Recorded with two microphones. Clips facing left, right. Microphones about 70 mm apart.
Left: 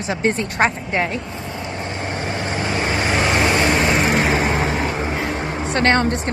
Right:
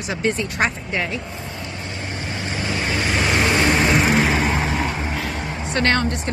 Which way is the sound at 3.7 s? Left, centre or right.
Centre.